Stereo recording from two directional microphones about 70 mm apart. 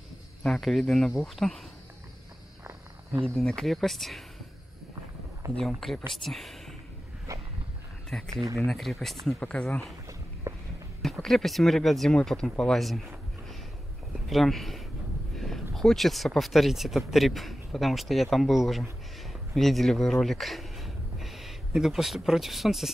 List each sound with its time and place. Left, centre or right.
0.4 s speech: centre
3.1 s speech: centre
5.7 s speech: centre
7.3 s a sound: right
8.1 s speech: centre
9.4 s speech: centre
10.4 s a sound: right
11.2 s speech: centre
14.3 s speech: centre